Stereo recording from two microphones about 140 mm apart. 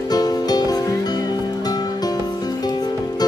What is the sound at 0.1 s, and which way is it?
Music, 30° left (ahead or behind).